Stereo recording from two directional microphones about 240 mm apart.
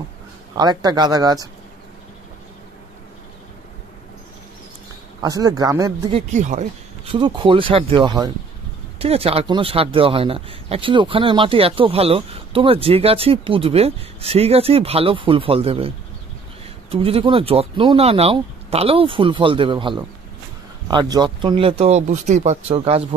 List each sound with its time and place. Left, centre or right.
0.6 s speech: centre
5.2 s speech: centre
6.3 s speech: right
16.9 s speech: right